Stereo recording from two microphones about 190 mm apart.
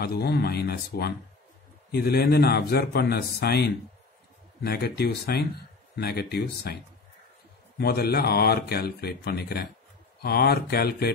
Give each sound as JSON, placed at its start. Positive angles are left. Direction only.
{"t": 0.0, "sound": "speech", "side_deg": 55}
{"t": 7.7, "sound": "speech", "side_deg": 55}